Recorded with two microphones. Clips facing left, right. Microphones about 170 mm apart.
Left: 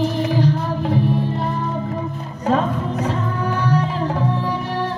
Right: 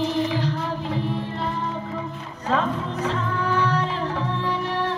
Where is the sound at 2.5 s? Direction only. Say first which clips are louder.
Left 4 dB; 45° left (ahead or behind).